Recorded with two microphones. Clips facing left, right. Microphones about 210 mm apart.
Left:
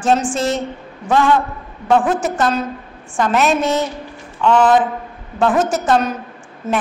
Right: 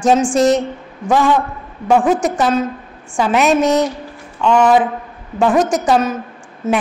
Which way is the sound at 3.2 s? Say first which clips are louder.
Right 2 dB; 10° right (ahead or behind).